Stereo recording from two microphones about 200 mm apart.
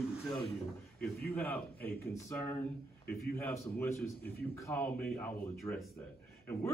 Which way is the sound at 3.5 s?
10° left (ahead or behind).